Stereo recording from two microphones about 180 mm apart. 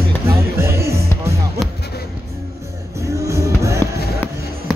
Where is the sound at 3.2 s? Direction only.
15° right (ahead or behind).